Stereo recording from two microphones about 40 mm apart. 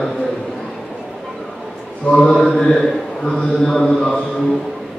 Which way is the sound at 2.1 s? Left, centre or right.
Centre.